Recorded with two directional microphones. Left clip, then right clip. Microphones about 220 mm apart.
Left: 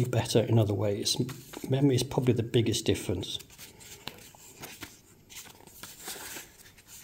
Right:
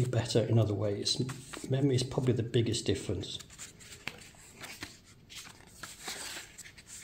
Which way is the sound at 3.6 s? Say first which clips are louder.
Right 1 dB; 5° left (ahead or behind).